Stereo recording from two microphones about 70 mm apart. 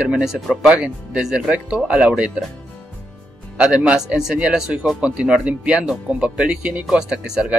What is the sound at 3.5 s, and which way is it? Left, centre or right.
Speech, centre.